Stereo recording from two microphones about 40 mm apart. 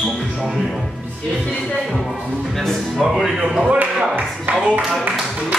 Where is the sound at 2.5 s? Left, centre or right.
Centre.